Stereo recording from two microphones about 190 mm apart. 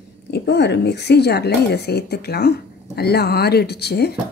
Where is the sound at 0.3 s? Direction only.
65° left (ahead or behind).